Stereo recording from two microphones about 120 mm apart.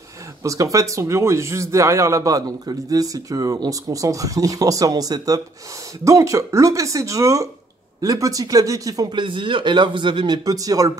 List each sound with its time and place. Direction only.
0.4 s a man's voice: 25° right (ahead or behind)
9.1 s speech: 45° right (ahead or behind)